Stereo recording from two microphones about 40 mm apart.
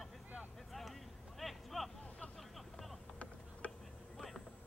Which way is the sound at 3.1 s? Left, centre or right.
Left.